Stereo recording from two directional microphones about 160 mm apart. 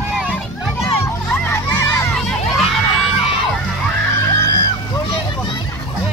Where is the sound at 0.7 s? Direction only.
15° left (ahead or behind).